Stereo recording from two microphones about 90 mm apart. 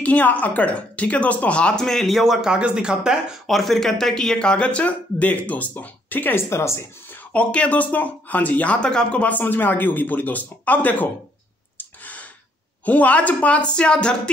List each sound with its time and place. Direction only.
0.0 s a woman's voice: 15° left (ahead or behind)
7.3 s a woman's voice: 15° left (ahead or behind)
11.8 s a sound: 20° left (ahead or behind)
12.8 s a woman's voice: 15° left (ahead or behind)